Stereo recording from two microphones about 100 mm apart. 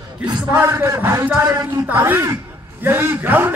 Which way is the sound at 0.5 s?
25° right (ahead or behind).